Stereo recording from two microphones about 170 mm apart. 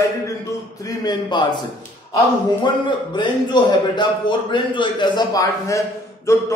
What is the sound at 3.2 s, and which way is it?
A man's voice, 25° left (ahead or behind).